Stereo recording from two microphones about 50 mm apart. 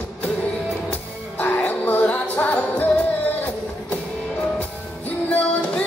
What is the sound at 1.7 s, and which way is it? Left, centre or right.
Music, left.